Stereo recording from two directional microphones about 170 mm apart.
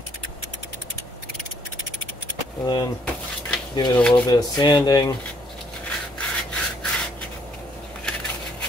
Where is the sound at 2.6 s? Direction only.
20° left (ahead or behind).